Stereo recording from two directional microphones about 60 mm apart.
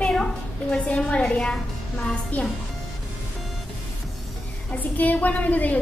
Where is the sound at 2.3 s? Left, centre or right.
Left.